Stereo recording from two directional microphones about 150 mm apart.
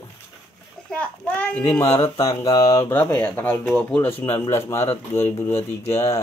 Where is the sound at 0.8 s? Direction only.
10° left (ahead or behind).